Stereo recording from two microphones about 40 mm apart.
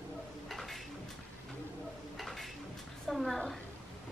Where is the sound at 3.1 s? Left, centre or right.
Centre.